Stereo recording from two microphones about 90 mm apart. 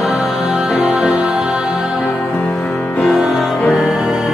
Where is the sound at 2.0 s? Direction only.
20° left (ahead or behind).